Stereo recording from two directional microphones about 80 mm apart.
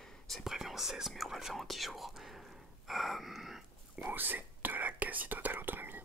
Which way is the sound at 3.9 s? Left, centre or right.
Right.